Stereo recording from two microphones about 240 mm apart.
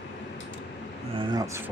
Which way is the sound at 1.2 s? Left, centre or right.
Centre.